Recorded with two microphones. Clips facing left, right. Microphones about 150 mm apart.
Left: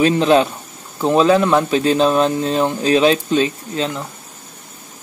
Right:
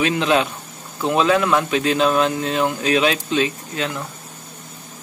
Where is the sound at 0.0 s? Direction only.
35° left (ahead or behind).